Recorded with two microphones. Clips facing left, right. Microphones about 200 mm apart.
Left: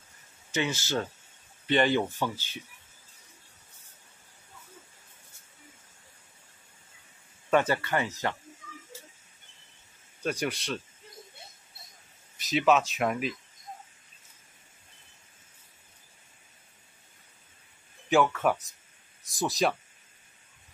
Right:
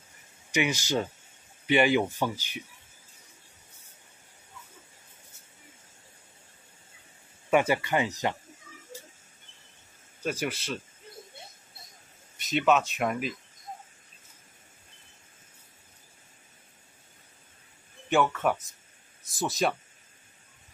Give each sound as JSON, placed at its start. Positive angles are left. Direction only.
{"t": 0.5, "sound": "speech", "side_deg": -15}
{"t": 7.4, "sound": "speech", "side_deg": -10}
{"t": 10.2, "sound": "speech", "side_deg": -5}
{"t": 12.4, "sound": "speech", "side_deg": 0}
{"t": 18.1, "sound": "speech", "side_deg": 0}